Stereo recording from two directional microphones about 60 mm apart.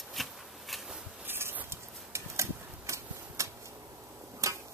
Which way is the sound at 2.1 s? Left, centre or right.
Right.